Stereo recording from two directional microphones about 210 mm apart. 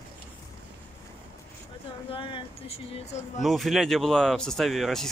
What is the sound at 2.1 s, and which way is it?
Speech, 25° left (ahead or behind).